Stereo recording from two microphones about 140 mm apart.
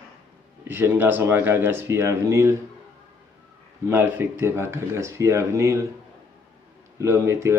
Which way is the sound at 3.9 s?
15° right (ahead or behind).